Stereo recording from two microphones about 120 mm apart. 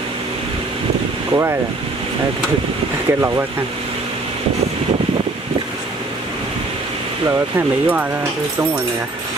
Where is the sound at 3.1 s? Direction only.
20° right (ahead or behind).